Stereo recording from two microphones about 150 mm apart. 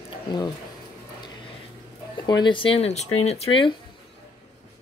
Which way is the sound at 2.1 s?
30° left (ahead or behind).